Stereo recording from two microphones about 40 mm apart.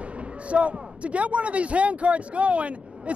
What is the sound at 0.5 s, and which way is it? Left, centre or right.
Speech, right.